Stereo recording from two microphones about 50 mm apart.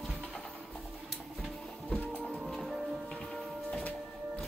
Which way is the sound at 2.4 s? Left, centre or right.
Centre.